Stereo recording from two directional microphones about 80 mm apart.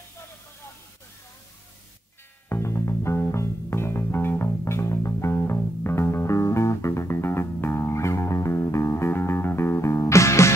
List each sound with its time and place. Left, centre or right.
2.5 s music: left